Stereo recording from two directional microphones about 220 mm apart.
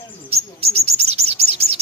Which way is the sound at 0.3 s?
25° right (ahead or behind).